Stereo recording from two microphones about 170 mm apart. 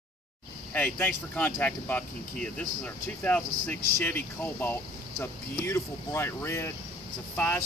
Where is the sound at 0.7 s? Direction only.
10° left (ahead or behind).